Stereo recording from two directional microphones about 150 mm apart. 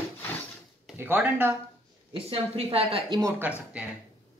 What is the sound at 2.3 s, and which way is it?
Speech, 40° right (ahead or behind).